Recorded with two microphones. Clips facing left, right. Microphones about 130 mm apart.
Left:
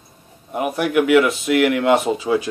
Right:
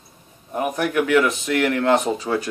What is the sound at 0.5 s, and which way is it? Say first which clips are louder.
Speech: left 3 dB; 15° left (ahead or behind).